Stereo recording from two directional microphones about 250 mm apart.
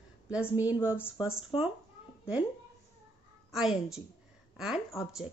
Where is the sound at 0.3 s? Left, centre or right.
Centre.